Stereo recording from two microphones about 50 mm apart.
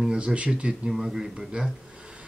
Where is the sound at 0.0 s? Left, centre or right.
Centre.